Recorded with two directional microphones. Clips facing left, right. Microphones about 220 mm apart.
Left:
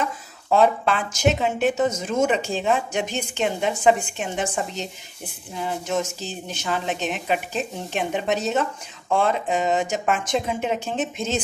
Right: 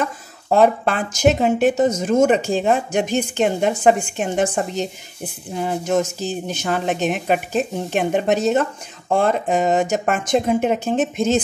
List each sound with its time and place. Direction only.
0.0 s a woman's voice: 50° right (ahead or behind)